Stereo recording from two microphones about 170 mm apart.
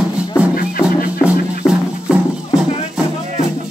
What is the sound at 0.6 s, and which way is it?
Music, 55° left (ahead or behind).